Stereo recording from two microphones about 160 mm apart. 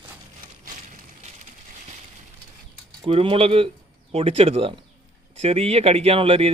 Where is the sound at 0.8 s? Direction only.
50° right (ahead or behind).